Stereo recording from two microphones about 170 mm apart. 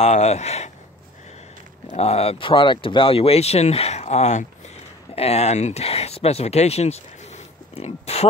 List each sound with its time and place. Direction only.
0.0 s speech: 40° left (ahead or behind)
1.9 s speech: 35° left (ahead or behind)